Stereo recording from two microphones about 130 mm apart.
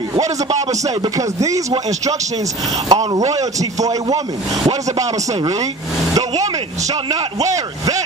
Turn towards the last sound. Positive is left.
turn(degrees=-25)  # may be behind; listen again after turning